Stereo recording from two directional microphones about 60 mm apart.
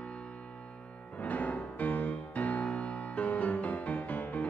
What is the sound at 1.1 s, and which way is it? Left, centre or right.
Music, left.